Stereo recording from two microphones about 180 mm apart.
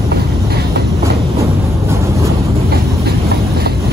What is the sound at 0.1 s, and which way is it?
Vehicle, 65° right (ahead or behind).